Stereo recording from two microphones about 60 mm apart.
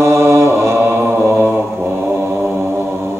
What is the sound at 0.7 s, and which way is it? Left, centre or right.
Mantra, right.